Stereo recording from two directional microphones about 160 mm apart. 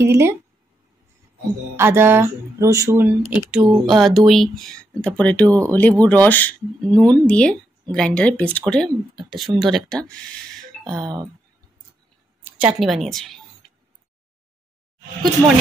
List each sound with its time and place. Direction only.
0.0 s speech: 15° right (ahead or behind)
1.8 s speech: 15° right (ahead or behind)
3.4 s speech: centre (ahead or behind)
11.0 s speech: 25° right (ahead or behind)
12.4 s a woman's voice: 5° right (ahead or behind)